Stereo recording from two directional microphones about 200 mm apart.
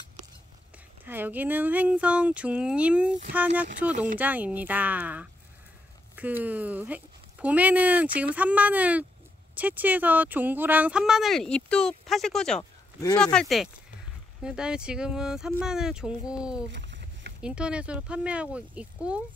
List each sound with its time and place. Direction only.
1.0 s speech: 10° right (ahead or behind)
16.7 s a sound: 65° right (ahead or behind)
17.4 s speech: 5° right (ahead or behind)